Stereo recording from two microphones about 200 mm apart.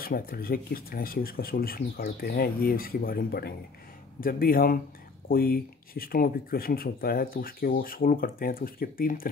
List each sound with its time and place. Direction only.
0.0 s speech: 50° left (ahead or behind)